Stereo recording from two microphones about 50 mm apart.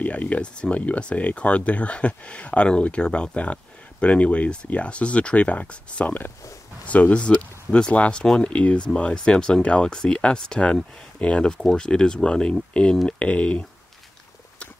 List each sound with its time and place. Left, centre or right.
0.0 s speech: left
11.4 s speech: centre